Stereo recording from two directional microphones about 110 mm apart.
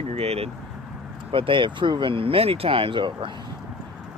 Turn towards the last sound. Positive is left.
turn(degrees=-50)  # may be behind; listen again after turning